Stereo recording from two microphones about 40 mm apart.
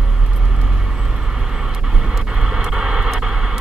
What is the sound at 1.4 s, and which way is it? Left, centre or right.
Vehicle, centre.